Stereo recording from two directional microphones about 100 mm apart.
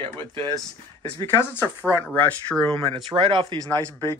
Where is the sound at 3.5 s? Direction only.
50° right (ahead or behind).